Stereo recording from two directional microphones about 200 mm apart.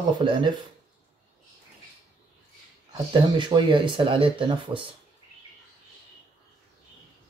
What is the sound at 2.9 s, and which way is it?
A man's voice, 20° right (ahead or behind).